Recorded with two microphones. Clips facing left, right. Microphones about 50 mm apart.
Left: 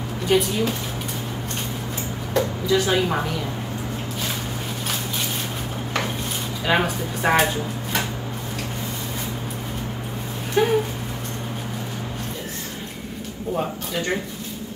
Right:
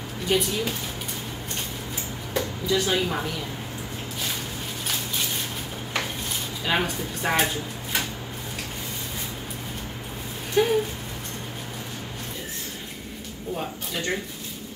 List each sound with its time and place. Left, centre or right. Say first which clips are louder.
0.3 s speech: left 4 dB; centre
2.3 s a sound: left 5 dB; centre
2.9 s speech: left 4 dB; centre
6.6 s speech: left 4 dB; centre
10.6 s speech: left 2 dB; centre